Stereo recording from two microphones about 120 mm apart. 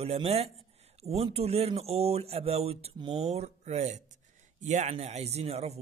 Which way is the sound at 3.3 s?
65° right (ahead or behind).